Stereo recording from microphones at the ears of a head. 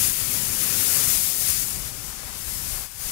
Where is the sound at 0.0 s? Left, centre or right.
Left.